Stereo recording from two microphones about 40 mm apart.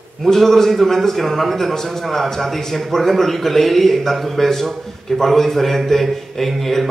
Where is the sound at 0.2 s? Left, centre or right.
Centre.